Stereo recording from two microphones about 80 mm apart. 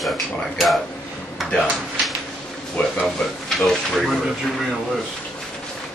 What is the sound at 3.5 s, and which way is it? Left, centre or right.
Speech, centre.